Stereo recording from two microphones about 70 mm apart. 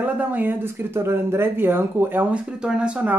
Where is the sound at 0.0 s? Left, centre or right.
Right.